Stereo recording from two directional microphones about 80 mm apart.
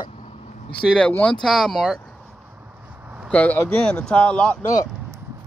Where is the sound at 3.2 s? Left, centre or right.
Centre.